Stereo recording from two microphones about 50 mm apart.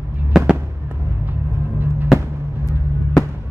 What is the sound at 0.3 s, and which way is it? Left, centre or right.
Fireworks, centre.